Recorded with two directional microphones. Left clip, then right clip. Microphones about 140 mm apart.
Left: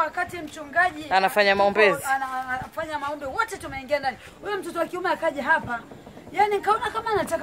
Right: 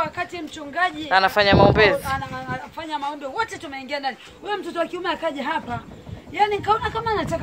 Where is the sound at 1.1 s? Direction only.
15° left (ahead or behind).